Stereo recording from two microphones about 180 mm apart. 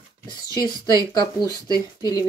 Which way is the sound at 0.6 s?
25° left (ahead or behind).